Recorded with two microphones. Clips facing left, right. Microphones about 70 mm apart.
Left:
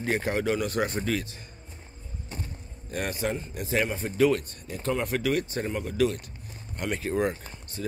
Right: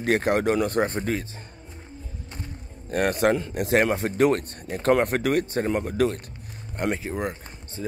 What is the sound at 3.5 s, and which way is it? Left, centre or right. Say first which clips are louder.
A man's voice: right 7 dB; right.